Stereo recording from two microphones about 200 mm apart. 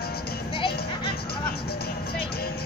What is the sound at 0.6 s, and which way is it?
Music, 25° left (ahead or behind).